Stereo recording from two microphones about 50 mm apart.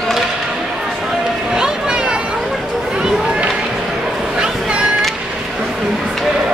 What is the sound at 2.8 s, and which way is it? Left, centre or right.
Run, centre.